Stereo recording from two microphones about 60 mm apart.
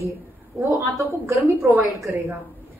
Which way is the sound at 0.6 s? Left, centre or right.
Right.